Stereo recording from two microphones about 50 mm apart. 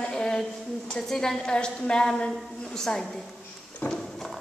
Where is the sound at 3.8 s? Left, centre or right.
Left.